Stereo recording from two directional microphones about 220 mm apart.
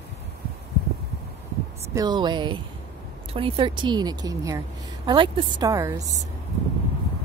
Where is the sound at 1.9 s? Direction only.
20° right (ahead or behind).